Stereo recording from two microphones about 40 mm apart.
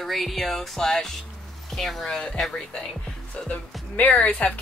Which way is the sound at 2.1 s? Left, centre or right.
Left.